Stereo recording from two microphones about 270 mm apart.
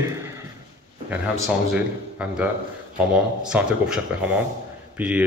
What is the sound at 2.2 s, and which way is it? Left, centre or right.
Speech, centre.